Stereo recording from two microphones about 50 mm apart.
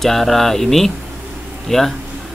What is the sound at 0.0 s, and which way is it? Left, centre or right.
Speech, centre.